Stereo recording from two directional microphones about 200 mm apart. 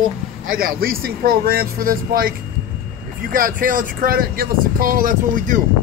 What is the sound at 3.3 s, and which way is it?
Speech, 45° right (ahead or behind).